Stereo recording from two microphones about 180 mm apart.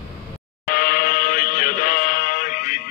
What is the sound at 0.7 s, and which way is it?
Music, 50° left (ahead or behind).